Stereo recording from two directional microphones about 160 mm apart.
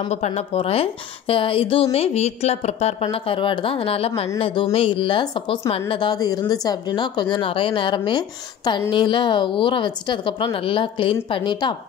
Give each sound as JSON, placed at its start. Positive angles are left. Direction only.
{"t": 0.1, "sound": "speech", "side_deg": 45}